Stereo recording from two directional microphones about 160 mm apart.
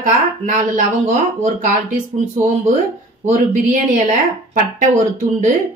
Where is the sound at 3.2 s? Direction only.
55° right (ahead or behind).